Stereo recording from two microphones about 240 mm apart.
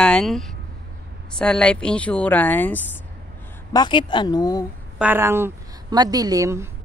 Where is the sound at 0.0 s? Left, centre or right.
Centre.